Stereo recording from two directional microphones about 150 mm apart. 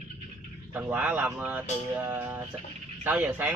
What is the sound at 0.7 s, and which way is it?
Speech, 10° right (ahead or behind).